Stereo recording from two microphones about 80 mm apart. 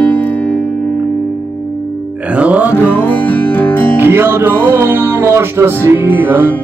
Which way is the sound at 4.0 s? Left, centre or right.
Right.